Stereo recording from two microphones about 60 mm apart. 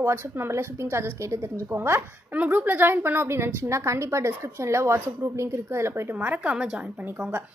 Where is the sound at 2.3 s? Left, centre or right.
Right.